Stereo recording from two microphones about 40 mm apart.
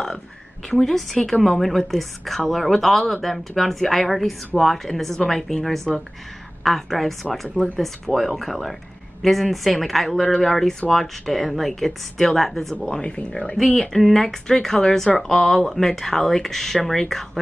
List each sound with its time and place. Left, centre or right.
0.7 s a woman's voice: centre
13.0 s speech: left
13.7 s speech: centre